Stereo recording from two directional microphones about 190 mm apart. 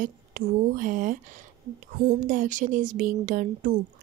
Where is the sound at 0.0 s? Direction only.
45° right (ahead or behind).